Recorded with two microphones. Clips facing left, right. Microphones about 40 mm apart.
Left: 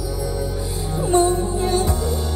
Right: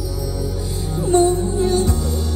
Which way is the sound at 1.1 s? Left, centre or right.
Centre.